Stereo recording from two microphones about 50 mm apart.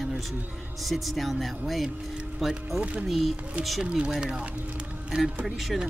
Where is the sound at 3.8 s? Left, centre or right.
Centre.